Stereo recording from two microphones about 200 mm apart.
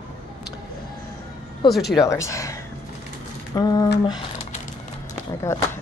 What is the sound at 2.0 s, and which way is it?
Speech, 15° left (ahead or behind).